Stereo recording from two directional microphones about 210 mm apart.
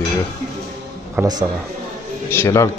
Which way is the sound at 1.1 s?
20° right (ahead or behind).